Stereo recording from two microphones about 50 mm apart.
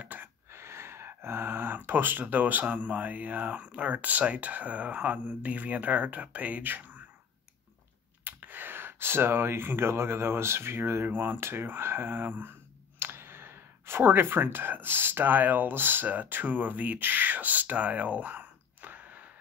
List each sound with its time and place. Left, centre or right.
0.0 s gasp: right
0.5 s gasp: right
1.9 s speech: right
8.2 s speech: right
11.3 s speech: right